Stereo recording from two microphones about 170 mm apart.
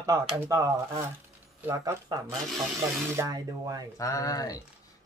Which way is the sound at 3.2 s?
20° right (ahead or behind).